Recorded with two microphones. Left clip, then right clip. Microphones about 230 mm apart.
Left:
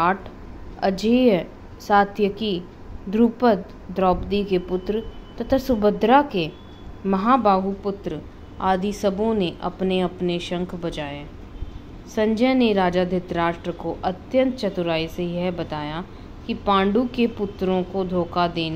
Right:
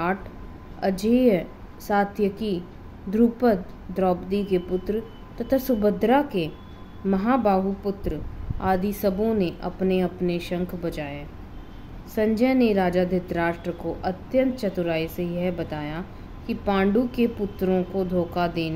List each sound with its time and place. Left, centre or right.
0.7 s a woman's voice: centre